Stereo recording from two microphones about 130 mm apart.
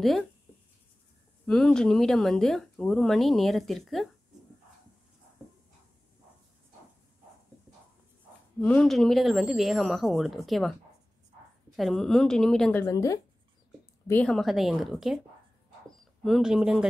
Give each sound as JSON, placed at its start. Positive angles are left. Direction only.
{"t": 1.4, "sound": "speech", "side_deg": 5}
{"t": 8.5, "sound": "speech", "side_deg": 10}
{"t": 12.9, "sound": "speech", "side_deg": 25}
{"t": 14.2, "sound": "speech", "side_deg": 0}
{"t": 16.3, "sound": "speech", "side_deg": -5}